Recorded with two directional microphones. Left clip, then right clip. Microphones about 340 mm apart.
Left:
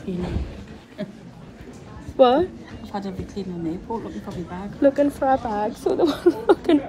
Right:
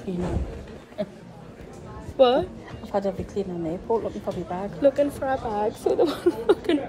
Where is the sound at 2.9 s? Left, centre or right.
Centre.